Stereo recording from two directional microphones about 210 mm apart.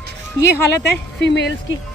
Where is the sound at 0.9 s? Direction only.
55° left (ahead or behind).